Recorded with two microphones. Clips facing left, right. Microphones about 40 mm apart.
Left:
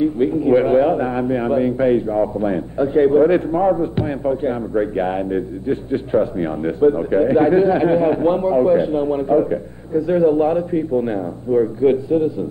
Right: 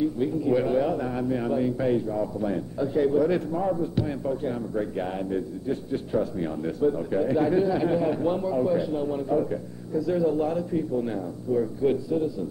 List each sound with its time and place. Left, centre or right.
0.0 s a man's voice: left